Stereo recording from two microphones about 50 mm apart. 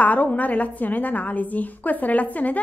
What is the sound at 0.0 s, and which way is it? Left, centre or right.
A woman's voice, left.